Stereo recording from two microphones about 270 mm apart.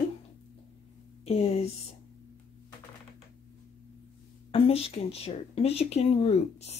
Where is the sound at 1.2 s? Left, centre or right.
Left.